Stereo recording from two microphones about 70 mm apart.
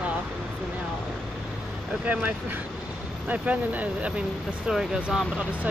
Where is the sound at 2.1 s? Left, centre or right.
Right.